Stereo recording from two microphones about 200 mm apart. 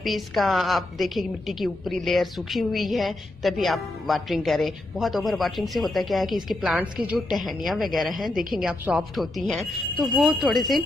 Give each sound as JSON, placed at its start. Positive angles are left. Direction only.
{"t": 0.0, "sound": "a woman's voice", "side_deg": 0}